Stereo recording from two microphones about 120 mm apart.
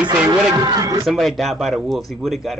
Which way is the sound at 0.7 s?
30° right (ahead or behind).